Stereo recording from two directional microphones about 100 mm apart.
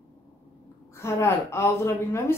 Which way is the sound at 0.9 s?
25° left (ahead or behind).